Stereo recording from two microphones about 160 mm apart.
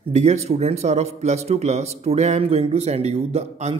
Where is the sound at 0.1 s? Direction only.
45° right (ahead or behind).